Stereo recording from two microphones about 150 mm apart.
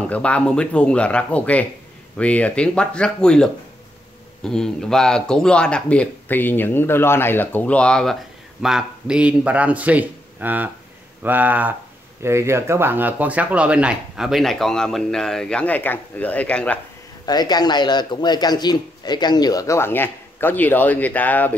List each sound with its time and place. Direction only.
0.1 s a man's voice: 10° left (ahead or behind)
17.3 s speech: 25° left (ahead or behind); by 21.5 s 10° left (ahead or behind)